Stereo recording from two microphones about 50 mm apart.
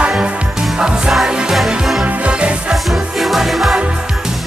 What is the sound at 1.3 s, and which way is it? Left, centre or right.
Music, centre.